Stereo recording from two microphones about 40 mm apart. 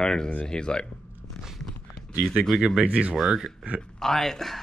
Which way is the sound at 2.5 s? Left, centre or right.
Right.